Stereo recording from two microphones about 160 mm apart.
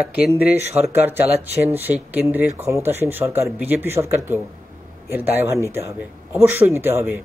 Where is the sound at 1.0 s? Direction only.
10° right (ahead or behind).